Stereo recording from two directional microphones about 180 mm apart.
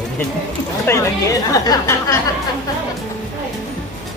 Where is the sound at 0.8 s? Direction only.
15° left (ahead or behind).